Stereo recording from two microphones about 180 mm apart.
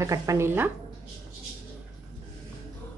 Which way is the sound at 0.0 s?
15° right (ahead or behind).